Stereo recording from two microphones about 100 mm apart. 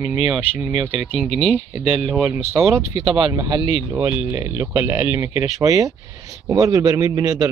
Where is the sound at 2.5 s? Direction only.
25° right (ahead or behind).